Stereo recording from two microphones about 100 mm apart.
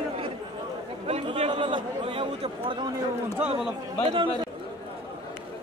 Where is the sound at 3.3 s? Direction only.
10° right (ahead or behind).